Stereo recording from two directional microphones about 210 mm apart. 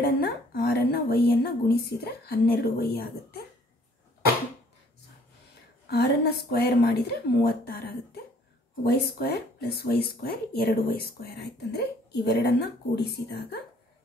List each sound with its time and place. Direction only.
0.0 s speech: 45° left (ahead or behind)
5.9 s speech: 50° left (ahead or behind)